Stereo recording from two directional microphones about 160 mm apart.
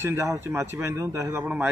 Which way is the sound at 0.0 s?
15° right (ahead or behind).